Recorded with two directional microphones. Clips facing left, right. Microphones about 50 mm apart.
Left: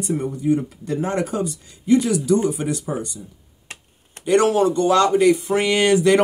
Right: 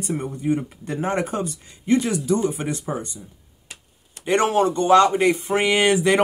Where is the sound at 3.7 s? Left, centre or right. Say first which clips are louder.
Left 4 dB; left.